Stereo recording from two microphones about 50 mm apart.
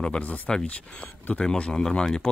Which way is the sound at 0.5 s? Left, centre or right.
Centre.